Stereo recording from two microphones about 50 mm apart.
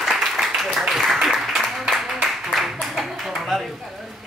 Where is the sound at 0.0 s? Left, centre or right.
Centre.